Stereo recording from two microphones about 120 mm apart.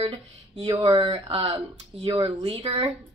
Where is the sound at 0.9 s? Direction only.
45° right (ahead or behind).